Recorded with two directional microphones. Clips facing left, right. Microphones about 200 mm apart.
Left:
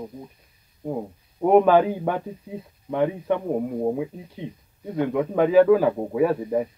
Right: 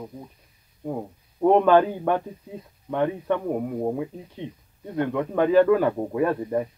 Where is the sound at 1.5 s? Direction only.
10° left (ahead or behind).